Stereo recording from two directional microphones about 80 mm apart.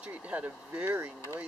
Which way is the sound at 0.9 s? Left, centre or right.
Right.